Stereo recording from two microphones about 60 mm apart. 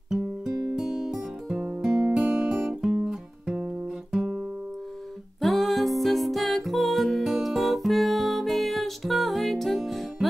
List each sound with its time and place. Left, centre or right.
0.7 s music: centre
1.5 s music: centre
1.8 s music: centre
5.4 s music: centre